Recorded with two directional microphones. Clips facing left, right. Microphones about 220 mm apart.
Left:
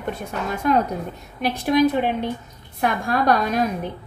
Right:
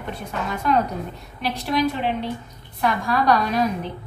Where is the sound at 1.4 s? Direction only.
50° left (ahead or behind).